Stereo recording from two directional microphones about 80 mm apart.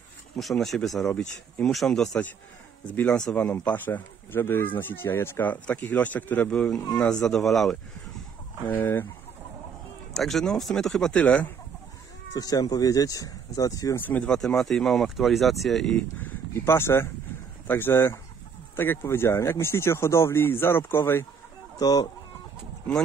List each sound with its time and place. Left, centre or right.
0.4 s speech: centre
2.9 s speech: centre
7.0 s speech: centre
10.1 s speech: centre
12.4 s speech: left
13.9 s speech: left
14.3 s speech: centre
16.0 s speech: left
21.7 s speech: left